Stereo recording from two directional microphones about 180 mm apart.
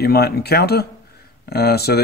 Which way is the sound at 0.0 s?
60° left (ahead or behind).